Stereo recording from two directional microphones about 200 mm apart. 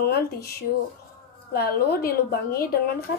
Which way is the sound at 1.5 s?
50° left (ahead or behind).